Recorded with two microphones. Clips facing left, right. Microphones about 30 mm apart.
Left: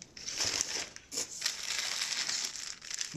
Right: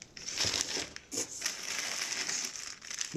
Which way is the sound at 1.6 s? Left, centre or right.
Left.